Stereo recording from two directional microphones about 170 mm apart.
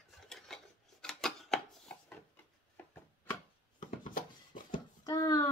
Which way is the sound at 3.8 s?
50° left (ahead or behind).